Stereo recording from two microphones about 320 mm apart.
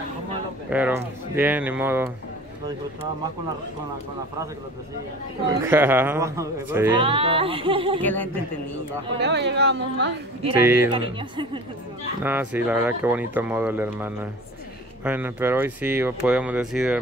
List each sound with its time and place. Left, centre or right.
0.7 s speech: centre
5.7 s speech: centre
8.0 s speech: centre
9.2 s a woman's voice: right
10.6 s speech: centre